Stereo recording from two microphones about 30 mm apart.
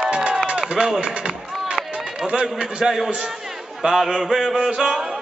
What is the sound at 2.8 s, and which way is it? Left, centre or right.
Mantra, centre.